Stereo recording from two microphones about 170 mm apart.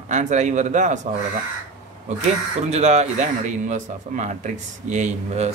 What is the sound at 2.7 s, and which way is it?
Speech, 40° right (ahead or behind).